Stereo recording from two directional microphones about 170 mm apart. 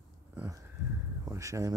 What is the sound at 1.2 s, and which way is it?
Speech, 20° right (ahead or behind).